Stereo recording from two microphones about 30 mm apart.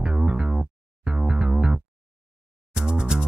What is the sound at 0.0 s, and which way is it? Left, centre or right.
Music, right.